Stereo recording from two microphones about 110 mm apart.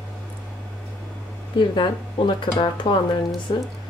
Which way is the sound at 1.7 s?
45° left (ahead or behind).